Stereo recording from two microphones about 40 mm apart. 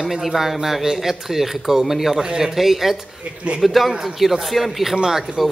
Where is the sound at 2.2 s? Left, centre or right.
Right.